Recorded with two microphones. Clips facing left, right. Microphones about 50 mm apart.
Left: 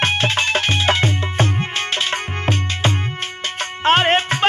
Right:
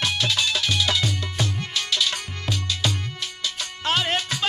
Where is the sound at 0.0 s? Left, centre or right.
Left.